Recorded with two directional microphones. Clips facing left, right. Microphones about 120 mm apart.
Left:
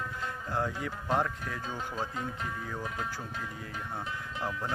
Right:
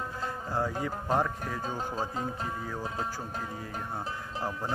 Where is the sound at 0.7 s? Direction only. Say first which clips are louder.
Right 2 dB; 40° right (ahead or behind).